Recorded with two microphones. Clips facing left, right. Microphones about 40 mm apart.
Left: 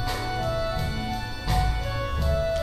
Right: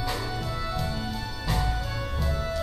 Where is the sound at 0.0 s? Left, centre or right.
Centre.